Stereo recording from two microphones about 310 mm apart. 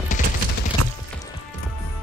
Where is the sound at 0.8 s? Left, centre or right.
Right.